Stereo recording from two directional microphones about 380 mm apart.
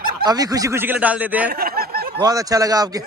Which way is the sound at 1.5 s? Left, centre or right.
Right.